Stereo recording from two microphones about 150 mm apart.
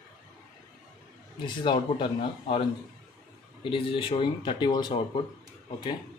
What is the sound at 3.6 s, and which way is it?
Speech, 35° left (ahead or behind).